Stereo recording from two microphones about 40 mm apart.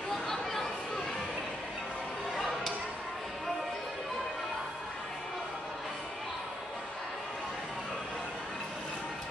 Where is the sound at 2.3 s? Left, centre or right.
Centre.